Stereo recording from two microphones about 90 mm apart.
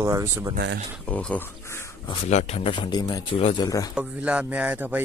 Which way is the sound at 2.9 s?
50° left (ahead or behind).